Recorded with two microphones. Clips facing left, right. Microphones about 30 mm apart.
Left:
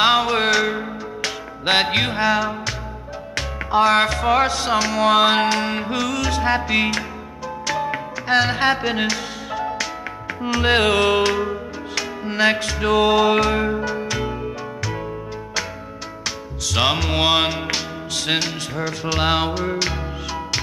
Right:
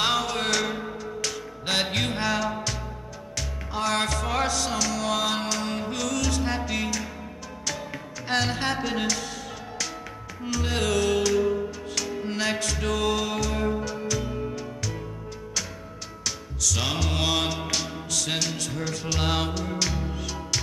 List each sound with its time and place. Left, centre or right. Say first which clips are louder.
0.0 s music: left 8 dB; left
2.1 s music: left 7 dB; centre
3.3 s music: left 12 dB; left
7.6 s music: left 10 dB; left
10.2 s music: left 11 dB; left
14.8 s music: left 7 dB; left
16.3 s music: left 1 dB; left